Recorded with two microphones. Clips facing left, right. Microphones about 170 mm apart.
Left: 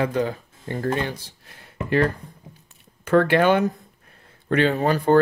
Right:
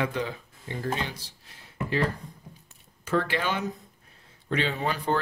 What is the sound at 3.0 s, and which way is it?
Speech, 60° left (ahead or behind).